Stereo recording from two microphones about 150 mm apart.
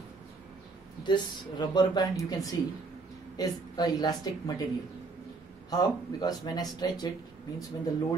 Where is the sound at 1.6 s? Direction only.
25° left (ahead or behind).